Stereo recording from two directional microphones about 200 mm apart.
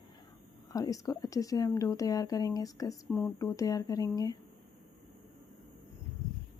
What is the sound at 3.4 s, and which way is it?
Speech, 15° left (ahead or behind).